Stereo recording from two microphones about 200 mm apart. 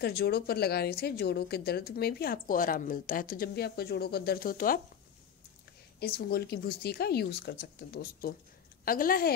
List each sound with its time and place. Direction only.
0.0 s speech: 50° left (ahead or behind)
5.9 s speech: 50° left (ahead or behind)